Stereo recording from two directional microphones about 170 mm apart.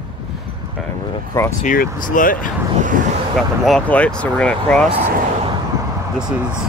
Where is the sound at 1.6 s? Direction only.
50° left (ahead or behind).